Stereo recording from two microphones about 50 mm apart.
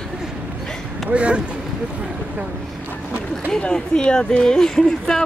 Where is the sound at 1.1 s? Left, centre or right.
Right.